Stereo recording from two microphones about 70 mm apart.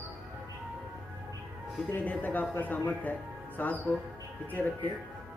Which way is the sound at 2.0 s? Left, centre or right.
Left.